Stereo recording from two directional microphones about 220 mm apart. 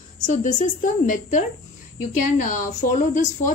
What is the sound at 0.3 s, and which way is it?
A woman's voice, 35° left (ahead or behind).